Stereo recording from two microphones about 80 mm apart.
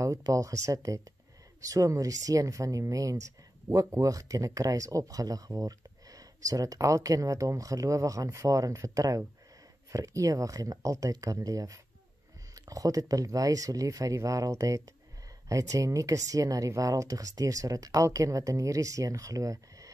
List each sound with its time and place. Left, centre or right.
0.3 s speech: right